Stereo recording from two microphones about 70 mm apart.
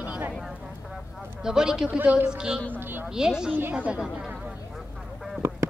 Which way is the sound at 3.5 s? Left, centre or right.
Right.